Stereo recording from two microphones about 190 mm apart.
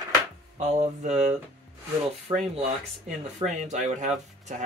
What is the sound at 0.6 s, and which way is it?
Speech, 35° right (ahead or behind).